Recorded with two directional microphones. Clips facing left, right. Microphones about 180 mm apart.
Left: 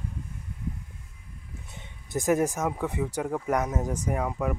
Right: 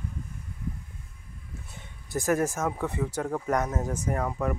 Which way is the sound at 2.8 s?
15° left (ahead or behind).